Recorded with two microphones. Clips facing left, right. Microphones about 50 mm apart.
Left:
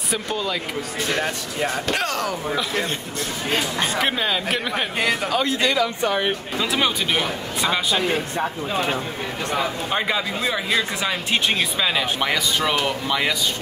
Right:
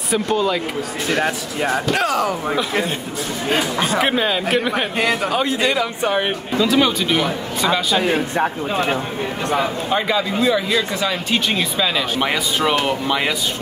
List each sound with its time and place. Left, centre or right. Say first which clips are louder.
0.1 s speech: right 7 dB; centre
3.4 s speech: right 4 dB; centre
5.3 s speech: right 2 dB; centre
6.8 s speech: right 4 dB; centre
8.0 s a man's voice: right 4 dB; right
9.8 s speech: right 4 dB; centre
12.2 s speech: right 2 dB; centre